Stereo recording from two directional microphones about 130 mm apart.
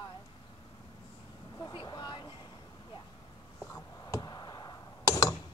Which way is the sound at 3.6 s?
25° left (ahead or behind).